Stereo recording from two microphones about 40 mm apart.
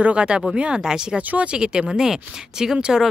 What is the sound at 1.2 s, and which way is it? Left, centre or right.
Speech, right.